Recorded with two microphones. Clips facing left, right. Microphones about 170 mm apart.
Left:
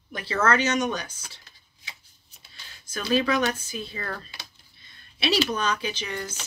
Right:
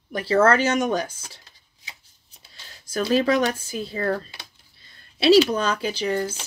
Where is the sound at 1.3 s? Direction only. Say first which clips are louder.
Right 3 dB; 35° right (ahead or behind).